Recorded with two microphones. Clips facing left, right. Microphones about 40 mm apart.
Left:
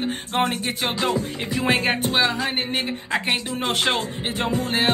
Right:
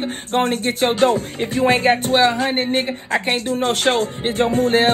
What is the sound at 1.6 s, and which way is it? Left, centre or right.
Music, left.